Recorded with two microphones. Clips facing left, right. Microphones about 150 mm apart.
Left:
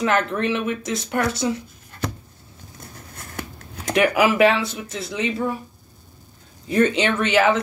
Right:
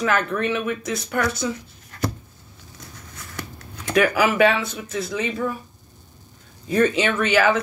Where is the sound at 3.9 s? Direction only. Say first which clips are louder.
Left 1 dB; 20° left (ahead or behind).